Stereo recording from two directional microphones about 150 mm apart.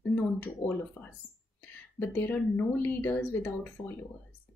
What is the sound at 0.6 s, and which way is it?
Speech, 50° left (ahead or behind).